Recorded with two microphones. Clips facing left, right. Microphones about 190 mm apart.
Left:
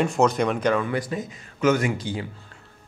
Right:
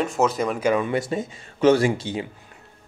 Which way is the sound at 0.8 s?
25° right (ahead or behind).